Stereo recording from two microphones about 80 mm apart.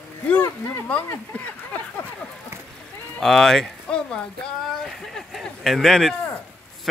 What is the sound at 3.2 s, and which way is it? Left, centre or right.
Speech, centre.